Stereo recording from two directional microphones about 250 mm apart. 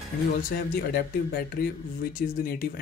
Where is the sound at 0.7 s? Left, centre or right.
Left.